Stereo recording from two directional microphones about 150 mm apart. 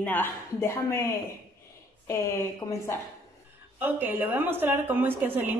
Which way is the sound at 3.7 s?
10° right (ahead or behind).